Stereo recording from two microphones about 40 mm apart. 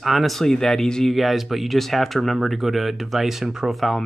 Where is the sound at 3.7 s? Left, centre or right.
Centre.